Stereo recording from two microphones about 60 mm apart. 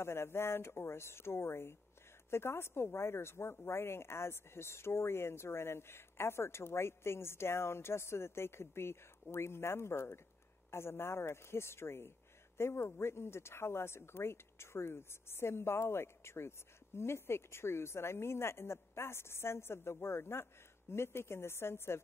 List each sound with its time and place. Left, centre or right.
0.0 s speech: left